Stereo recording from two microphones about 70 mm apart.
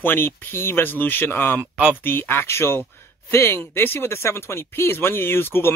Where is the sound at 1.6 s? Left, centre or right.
Centre.